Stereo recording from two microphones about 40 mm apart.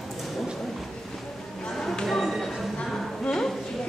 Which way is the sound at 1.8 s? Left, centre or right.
Centre.